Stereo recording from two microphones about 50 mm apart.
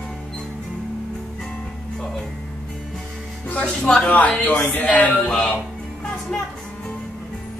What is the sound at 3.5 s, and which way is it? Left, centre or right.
Music, left.